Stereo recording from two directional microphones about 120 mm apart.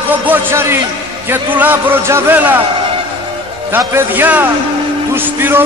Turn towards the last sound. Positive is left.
turn(degrees=-15)  # may be behind; listen again after turning